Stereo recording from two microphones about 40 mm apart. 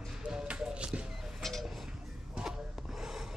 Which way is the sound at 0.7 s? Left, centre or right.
Right.